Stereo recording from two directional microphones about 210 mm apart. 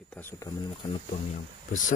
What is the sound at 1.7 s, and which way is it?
Speech, 40° left (ahead or behind).